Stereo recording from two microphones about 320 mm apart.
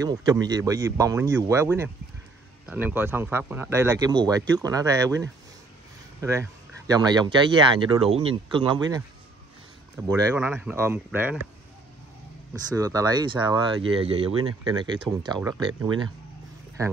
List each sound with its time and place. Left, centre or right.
0.0 s speech: centre
12.7 s speech: centre